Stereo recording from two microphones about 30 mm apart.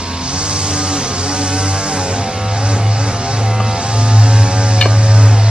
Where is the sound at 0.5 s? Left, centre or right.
Right.